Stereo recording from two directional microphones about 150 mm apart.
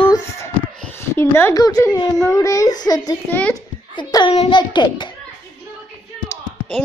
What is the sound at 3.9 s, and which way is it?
Speech, 30° left (ahead or behind).